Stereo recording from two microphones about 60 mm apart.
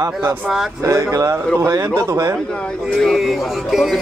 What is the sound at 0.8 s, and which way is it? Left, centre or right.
Speech, right.